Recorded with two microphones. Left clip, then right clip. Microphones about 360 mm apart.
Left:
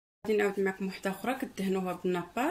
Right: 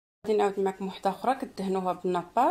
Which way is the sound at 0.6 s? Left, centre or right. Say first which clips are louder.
Right 2 dB; right.